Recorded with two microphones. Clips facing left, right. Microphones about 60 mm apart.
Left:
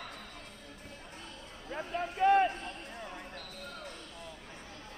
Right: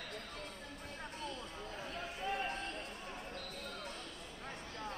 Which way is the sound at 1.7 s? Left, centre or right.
Left.